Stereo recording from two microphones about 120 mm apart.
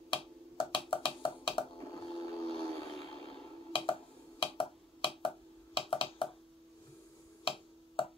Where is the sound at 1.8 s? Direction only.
35° left (ahead or behind).